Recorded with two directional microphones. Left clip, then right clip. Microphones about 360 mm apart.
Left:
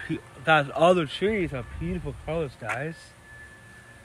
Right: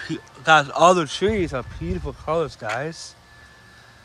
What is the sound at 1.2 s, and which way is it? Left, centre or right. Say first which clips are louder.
Speech: right 4 dB; right.